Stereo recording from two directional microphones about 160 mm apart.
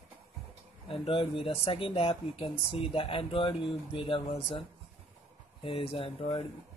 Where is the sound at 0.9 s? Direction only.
35° left (ahead or behind).